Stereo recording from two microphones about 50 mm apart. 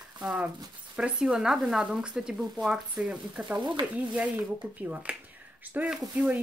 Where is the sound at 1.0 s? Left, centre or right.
Centre.